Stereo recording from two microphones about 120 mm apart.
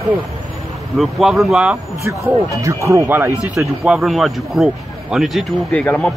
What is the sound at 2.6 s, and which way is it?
Speech, 25° right (ahead or behind).